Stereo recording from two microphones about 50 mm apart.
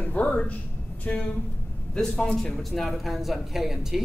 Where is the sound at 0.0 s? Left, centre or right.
Left.